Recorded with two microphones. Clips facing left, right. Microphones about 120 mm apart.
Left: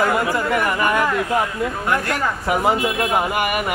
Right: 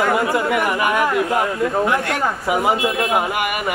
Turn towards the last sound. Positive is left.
turn(degrees=0)  # may be behind; listen again after turning